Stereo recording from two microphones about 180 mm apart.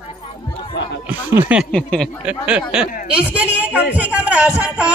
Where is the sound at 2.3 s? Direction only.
5° right (ahead or behind).